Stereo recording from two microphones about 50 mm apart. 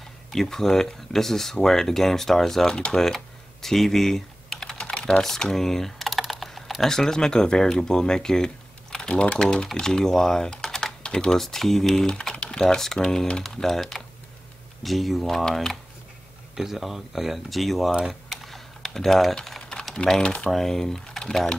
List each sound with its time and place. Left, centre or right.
0.3 s speech: centre
3.6 s typing: centre
4.8 s speech: centre
12.2 s speech: centre
18.3 s typing: centre
20.0 s speech: centre